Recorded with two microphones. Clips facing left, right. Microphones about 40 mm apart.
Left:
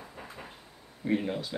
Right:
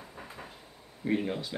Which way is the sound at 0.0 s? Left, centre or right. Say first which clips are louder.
Left 1 dB; centre.